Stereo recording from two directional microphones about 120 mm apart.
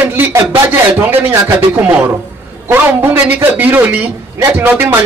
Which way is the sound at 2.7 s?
15° right (ahead or behind).